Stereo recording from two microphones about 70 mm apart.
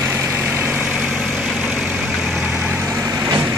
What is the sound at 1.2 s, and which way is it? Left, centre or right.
Vehicle, centre.